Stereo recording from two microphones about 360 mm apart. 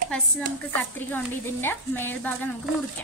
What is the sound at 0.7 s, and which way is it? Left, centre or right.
A woman's voice, centre.